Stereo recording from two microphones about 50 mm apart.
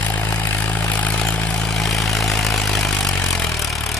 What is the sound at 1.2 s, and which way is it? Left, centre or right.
Vehicle, centre.